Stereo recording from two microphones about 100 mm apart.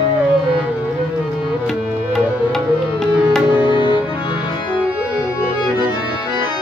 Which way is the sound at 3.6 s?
55° left (ahead or behind).